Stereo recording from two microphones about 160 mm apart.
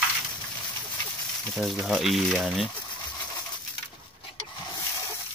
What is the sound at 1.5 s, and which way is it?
Speech, centre (ahead or behind).